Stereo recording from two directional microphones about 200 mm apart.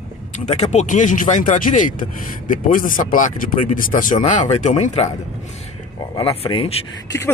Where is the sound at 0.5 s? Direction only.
35° left (ahead or behind).